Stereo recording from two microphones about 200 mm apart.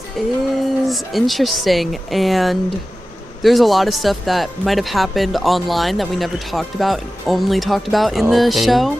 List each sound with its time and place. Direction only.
0.2 s speech: centre (ahead or behind)